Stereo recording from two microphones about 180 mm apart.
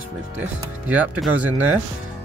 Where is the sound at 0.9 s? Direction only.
10° right (ahead or behind).